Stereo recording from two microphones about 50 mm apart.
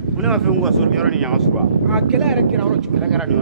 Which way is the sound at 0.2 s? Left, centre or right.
Centre.